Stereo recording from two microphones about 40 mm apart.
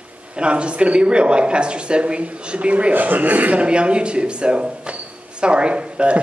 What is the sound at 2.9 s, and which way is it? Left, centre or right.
Speech, right.